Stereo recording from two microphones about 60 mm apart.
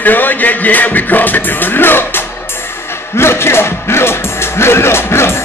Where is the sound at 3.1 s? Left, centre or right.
Left.